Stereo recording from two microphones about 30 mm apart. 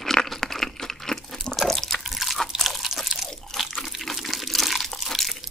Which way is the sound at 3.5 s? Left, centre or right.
Centre.